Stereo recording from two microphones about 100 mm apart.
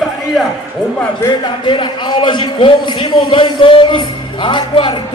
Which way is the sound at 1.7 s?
50° left (ahead or behind).